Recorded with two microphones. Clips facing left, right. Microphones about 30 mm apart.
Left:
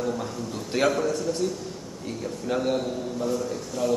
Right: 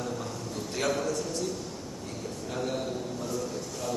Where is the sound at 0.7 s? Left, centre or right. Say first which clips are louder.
Left 6 dB; left.